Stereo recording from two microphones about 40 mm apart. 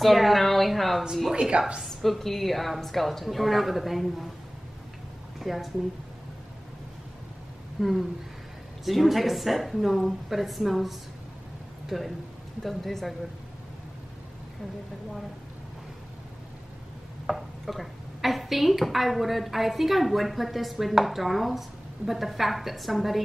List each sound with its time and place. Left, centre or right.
0.0 s speech: centre
1.3 s a woman's voice: right
1.9 s speech: centre
5.4 s speech: centre
7.8 s speech: centre
17.3 s speech: centre